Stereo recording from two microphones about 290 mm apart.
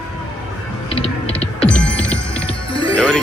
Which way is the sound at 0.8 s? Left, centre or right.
Centre.